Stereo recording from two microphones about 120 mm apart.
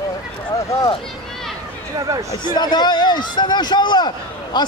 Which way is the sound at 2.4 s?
35° left (ahead or behind).